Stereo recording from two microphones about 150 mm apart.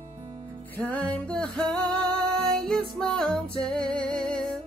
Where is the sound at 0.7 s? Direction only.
10° left (ahead or behind).